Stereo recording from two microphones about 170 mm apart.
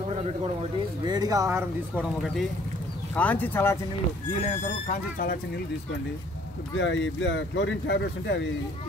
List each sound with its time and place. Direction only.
1.0 s speech: 25° right (ahead or behind)
2.0 s speech: centre (ahead or behind)
3.2 s speech: 10° left (ahead or behind)
4.4 s speech: 45° left (ahead or behind)
6.7 s speech: 90° left